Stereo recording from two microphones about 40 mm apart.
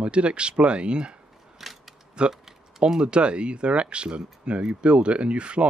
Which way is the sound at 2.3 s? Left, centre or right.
Centre.